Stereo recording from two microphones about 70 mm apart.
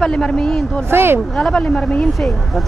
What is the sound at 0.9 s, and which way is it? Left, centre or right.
Speech, right.